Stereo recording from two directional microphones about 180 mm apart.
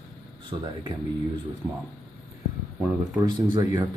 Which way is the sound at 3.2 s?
20° right (ahead or behind).